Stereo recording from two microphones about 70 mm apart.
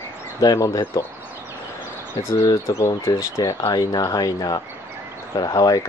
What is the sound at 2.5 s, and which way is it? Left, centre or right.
Speech, left.